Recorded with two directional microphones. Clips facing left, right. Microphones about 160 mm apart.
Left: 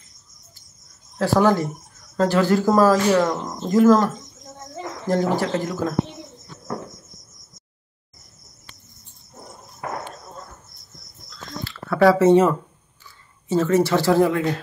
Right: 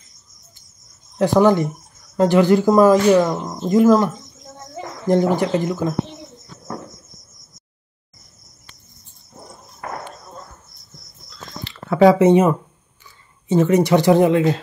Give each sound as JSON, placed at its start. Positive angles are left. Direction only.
{"t": 1.1, "sound": "speech", "side_deg": -20}
{"t": 11.6, "sound": "a sound", "side_deg": -20}
{"t": 13.5, "sound": "speech", "side_deg": -15}